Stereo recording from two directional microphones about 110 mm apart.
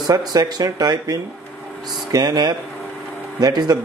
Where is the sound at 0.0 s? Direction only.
35° right (ahead or behind).